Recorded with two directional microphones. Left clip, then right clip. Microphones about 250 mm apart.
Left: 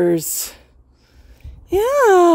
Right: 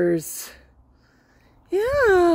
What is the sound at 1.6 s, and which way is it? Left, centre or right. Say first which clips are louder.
Speech: left 5 dB; left.